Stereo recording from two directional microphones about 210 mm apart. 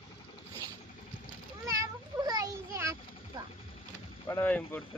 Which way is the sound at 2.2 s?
20° right (ahead or behind).